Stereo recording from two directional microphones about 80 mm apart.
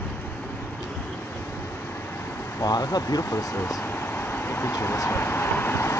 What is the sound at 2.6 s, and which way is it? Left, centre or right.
Speech, left.